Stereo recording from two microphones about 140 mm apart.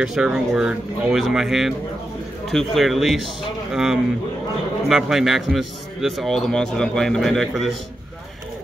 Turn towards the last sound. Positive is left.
turn(degrees=0)  # may be behind; listen again after turning